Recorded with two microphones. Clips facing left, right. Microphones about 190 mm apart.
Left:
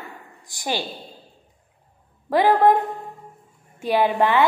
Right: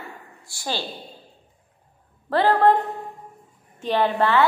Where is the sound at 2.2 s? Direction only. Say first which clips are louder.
Left 1 dB; 10° left (ahead or behind).